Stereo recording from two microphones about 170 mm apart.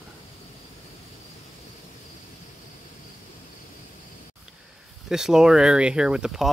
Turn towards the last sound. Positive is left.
turn(degrees=0)  # may be behind; listen again after turning